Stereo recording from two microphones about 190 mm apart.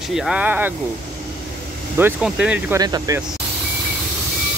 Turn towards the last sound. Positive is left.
turn(degrees=-20)  # may be behind; listen again after turning